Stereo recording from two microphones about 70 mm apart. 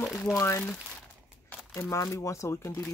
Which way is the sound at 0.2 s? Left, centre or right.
Left.